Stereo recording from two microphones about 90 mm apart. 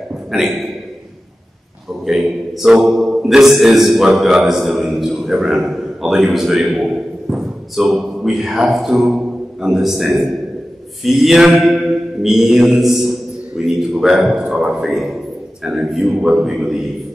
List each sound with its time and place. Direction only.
0.3 s mantra: 5° right (ahead or behind)
2.0 s a man's voice: 5° right (ahead or behind)
11.1 s mantra: 5° right (ahead or behind)
13.6 s a man's voice: 5° right (ahead or behind)
15.6 s mantra: 5° right (ahead or behind)